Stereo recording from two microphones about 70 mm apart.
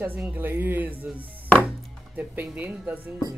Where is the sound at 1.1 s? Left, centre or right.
Left.